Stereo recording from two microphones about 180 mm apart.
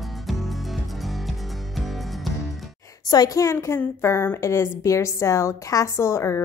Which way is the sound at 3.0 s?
20° left (ahead or behind).